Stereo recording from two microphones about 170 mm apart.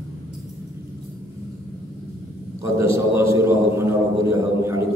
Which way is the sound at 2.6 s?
15° right (ahead or behind).